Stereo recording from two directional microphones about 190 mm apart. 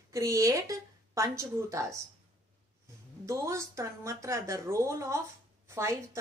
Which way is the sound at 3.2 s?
15° right (ahead or behind).